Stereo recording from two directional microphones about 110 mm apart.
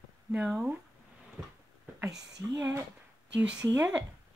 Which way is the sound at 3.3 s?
10° right (ahead or behind).